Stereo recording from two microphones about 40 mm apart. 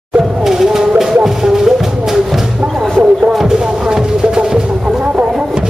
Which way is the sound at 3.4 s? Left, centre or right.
Centre.